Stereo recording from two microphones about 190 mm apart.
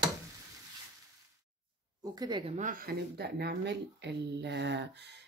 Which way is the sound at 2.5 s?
45° right (ahead or behind).